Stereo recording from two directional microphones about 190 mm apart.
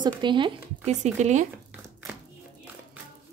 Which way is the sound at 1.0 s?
40° right (ahead or behind).